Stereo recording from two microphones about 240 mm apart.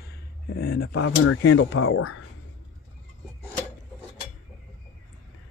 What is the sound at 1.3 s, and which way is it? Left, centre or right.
Speech, left.